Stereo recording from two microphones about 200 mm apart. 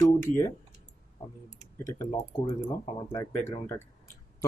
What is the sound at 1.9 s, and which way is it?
Speech, 15° left (ahead or behind).